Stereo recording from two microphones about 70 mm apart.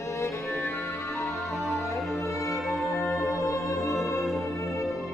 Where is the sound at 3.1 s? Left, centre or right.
Left.